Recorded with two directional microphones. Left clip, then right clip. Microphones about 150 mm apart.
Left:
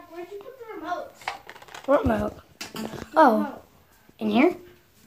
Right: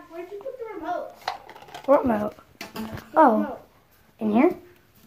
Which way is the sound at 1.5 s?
10° left (ahead or behind).